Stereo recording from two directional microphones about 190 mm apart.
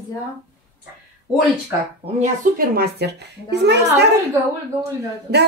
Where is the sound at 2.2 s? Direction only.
50° right (ahead or behind).